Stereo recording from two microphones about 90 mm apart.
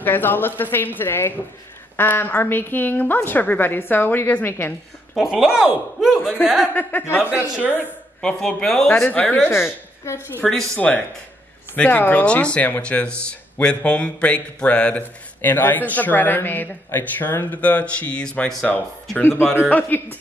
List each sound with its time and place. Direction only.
0.0 s a woman's voice: 20° left (ahead or behind)
5.1 s speech: 5° right (ahead or behind)
6.7 s a woman's voice: 20° left (ahead or behind)
7.5 s speech: 15° right (ahead or behind)
8.2 s speech: 10° left (ahead or behind)
9.5 s a woman's voice: 30° left (ahead or behind)
10.4 s speech: 5° left (ahead or behind)
11.7 s a woman's voice: 15° left (ahead or behind)